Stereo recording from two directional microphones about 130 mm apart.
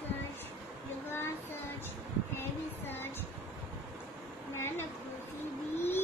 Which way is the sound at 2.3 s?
15° left (ahead or behind).